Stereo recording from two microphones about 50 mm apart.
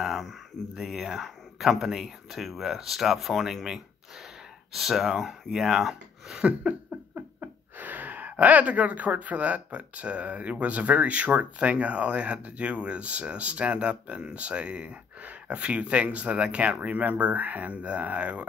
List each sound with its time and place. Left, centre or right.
0.0 s a sound: centre
0.7 s speech: centre
4.7 s speech: centre
6.3 s speech: right
7.2 s speech: right